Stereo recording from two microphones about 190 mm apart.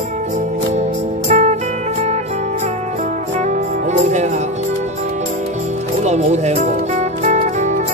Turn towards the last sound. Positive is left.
turn(degrees=-40)  # may be behind; listen again after turning